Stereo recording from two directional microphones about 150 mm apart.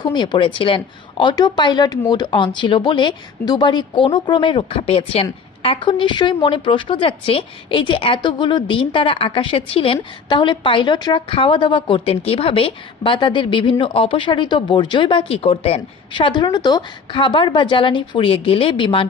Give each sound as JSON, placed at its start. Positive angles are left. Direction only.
{"t": 0.0, "sound": "speech", "side_deg": 30}